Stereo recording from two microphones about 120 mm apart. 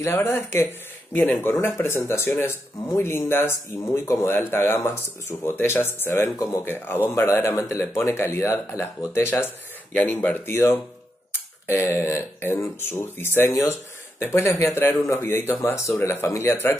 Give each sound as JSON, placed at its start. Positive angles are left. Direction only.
{"t": 0.0, "sound": "speech", "side_deg": 20}